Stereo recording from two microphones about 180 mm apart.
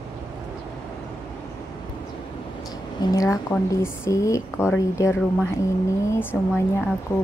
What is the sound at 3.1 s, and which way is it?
Speech, 20° left (ahead or behind).